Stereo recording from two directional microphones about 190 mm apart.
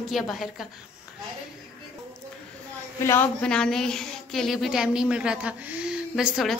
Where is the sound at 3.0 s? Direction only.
10° left (ahead or behind).